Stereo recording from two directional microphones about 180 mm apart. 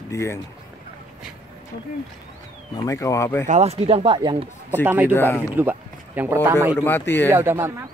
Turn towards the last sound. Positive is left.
turn(degrees=-10)  # may be behind; listen again after turning